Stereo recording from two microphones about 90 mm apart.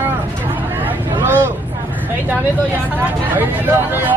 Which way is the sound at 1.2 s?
25° right (ahead or behind).